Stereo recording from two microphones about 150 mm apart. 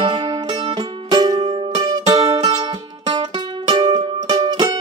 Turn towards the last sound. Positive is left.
turn(degrees=-30)  # may be behind; listen again after turning